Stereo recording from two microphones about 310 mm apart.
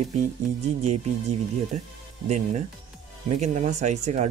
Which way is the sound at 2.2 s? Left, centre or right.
Right.